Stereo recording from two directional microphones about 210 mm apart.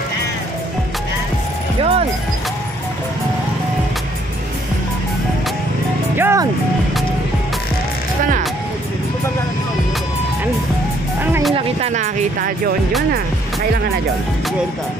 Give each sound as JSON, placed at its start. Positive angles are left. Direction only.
{"t": 1.8, "sound": "music", "side_deg": -25}
{"t": 6.1, "sound": "music", "side_deg": -15}
{"t": 11.5, "sound": "speech", "side_deg": -30}